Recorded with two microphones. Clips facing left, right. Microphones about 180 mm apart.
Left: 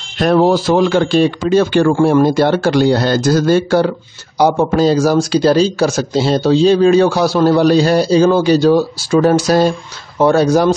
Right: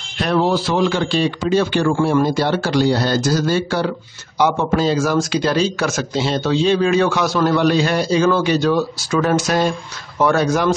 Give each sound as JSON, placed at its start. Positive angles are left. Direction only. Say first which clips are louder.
{"t": 0.2, "sound": "speech", "louder": "left 6 dB", "side_deg": 40}